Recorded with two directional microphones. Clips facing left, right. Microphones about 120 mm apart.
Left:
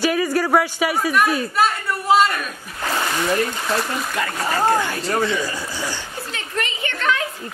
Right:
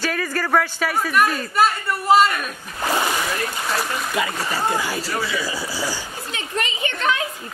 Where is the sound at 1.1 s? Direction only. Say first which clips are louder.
Left 1 dB; centre (ahead or behind).